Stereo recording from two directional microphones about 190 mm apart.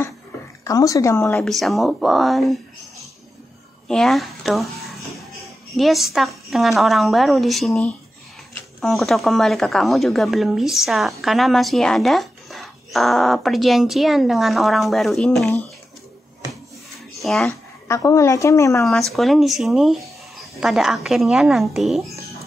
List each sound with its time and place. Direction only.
0.7 s speech: 15° left (ahead or behind)
1.3 s a woman's voice: centre (ahead or behind)
3.8 s a woman's voice: centre (ahead or behind)
17.2 s a sound: centre (ahead or behind)
17.5 s speech: 15° left (ahead or behind)
19.1 s a woman's voice: centre (ahead or behind)